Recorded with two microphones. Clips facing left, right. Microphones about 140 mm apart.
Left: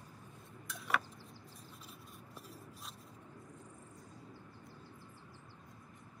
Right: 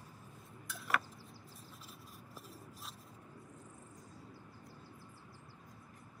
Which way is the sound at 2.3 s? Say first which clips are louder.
Even; centre (ahead or behind).